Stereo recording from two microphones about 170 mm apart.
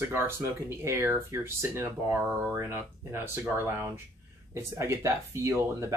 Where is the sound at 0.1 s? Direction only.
15° right (ahead or behind).